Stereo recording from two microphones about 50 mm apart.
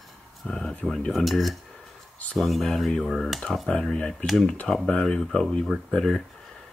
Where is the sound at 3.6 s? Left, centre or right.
Centre.